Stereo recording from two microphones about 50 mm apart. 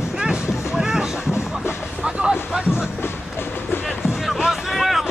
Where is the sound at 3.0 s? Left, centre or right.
Left.